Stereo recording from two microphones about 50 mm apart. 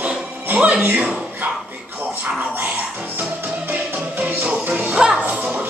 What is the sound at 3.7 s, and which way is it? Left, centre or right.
Music, right.